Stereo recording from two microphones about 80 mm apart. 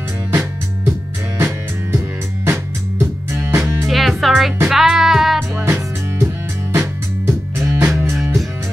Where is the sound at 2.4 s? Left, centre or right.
Right.